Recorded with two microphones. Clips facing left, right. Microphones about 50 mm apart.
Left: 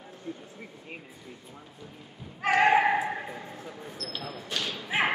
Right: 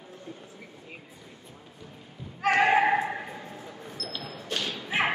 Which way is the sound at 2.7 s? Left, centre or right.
Centre.